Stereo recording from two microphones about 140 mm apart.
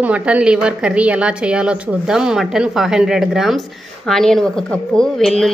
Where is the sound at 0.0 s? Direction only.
10° right (ahead or behind).